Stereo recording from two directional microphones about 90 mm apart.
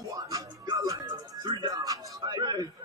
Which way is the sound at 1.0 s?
55° right (ahead or behind).